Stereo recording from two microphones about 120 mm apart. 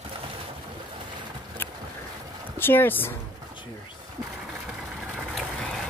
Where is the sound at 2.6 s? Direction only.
15° left (ahead or behind).